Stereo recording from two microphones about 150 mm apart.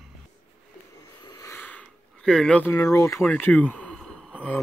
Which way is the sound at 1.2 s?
25° left (ahead or behind).